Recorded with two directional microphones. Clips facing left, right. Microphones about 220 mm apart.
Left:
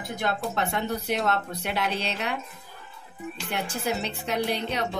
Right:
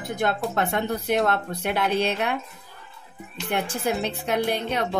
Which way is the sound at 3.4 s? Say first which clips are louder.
Right 4 dB; 55° right (ahead or behind).